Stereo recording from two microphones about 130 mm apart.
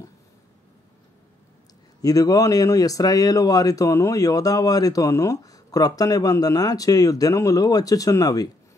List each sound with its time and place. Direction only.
2.0 s speech: 25° left (ahead or behind)